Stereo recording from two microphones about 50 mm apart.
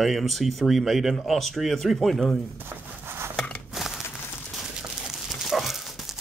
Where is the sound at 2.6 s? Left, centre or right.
Right.